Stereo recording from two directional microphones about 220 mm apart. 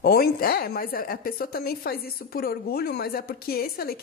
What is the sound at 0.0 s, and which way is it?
A woman's voice, 45° left (ahead or behind).